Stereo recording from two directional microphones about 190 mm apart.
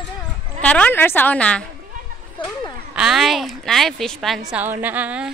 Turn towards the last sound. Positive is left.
turn(degrees=-5)  # may be behind; listen again after turning